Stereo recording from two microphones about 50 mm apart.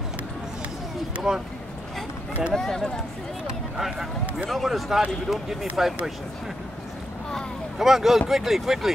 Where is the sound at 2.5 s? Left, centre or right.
Centre.